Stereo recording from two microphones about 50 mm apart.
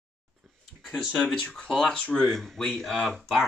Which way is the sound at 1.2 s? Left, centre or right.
Centre.